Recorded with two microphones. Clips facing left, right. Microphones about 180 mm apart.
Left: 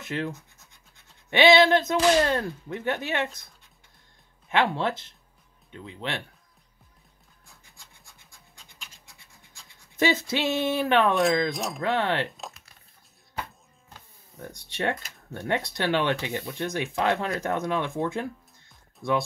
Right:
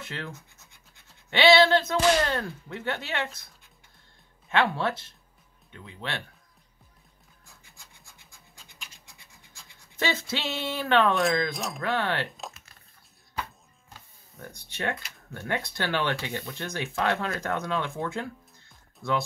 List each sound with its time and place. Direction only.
0.0 s speech: 15° left (ahead or behind)
1.3 s speech: 20° left (ahead or behind)
4.5 s speech: 20° left (ahead or behind)
9.9 s speech: 15° left (ahead or behind)
11.5 s speech: centre (ahead or behind)
11.8 s speech: 20° left (ahead or behind)
12.4 s typing: centre (ahead or behind)
14.4 s speech: 20° left (ahead or behind)